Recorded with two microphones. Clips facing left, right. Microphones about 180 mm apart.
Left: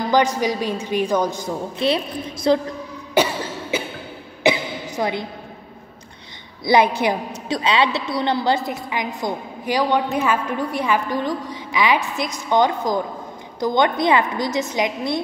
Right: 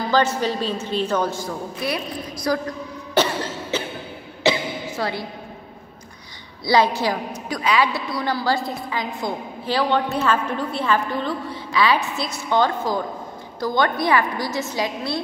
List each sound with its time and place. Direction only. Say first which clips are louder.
0.1 s a woman's voice: left 2 dB; 15° left (ahead or behind)
3.2 s cough: left 1 dB; 10° left (ahead or behind)
3.7 s a sound: left 2 dB; 10° left (ahead or behind)
6.6 s a woman's voice: left 2 dB; 20° left (ahead or behind)